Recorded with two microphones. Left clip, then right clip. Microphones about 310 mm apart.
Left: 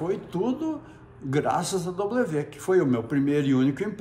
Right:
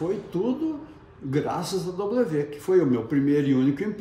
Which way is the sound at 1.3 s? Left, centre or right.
Centre.